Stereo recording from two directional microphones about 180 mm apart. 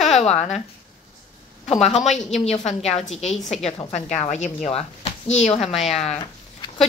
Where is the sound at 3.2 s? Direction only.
Centre (ahead or behind).